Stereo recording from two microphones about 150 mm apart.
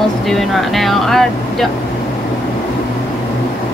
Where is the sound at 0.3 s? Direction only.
Centre (ahead or behind).